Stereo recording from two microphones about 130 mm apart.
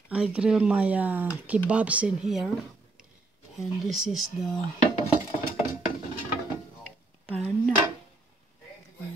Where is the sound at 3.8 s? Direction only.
Centre (ahead or behind).